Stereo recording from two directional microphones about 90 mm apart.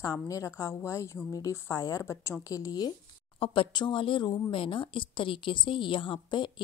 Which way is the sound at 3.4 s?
70° left (ahead or behind).